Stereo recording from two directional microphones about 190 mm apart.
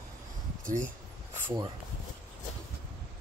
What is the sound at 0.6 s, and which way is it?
Speech, 40° right (ahead or behind).